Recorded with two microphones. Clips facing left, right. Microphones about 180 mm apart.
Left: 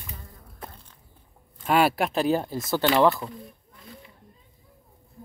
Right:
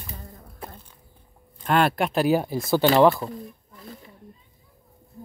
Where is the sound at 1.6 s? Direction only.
5° left (ahead or behind).